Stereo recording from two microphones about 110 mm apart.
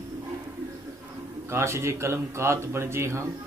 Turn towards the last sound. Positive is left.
turn(degrees=-25)  # may be behind; listen again after turning